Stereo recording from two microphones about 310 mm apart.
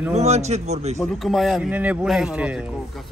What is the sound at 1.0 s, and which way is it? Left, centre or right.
Speech, centre.